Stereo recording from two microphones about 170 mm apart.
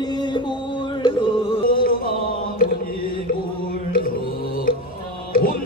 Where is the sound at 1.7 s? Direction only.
55° left (ahead or behind).